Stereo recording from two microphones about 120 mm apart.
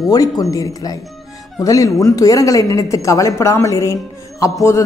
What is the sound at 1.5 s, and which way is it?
A woman's voice, 30° left (ahead or behind).